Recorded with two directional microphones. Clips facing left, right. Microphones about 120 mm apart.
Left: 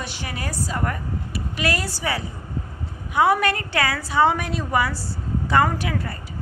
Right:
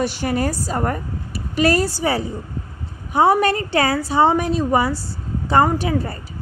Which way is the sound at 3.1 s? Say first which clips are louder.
Right 4 dB; 30° right (ahead or behind).